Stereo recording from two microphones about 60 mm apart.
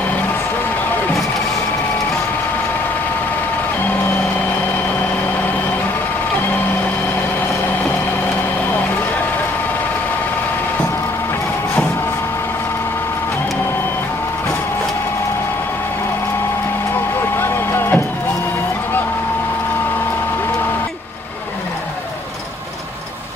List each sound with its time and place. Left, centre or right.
17.4 s vehicle: left